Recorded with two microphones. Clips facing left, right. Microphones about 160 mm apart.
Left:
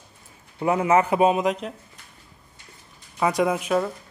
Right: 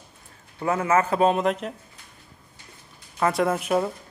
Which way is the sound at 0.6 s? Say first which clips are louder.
Left 2 dB; 15° left (ahead or behind).